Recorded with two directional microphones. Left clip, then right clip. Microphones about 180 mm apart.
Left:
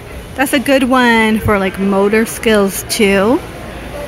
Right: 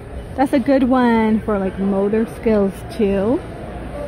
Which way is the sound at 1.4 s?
10° left (ahead or behind).